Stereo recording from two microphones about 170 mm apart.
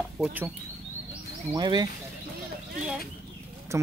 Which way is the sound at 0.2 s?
10° right (ahead or behind).